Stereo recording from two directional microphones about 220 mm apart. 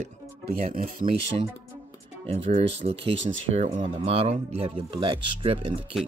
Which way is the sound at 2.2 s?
30° right (ahead or behind).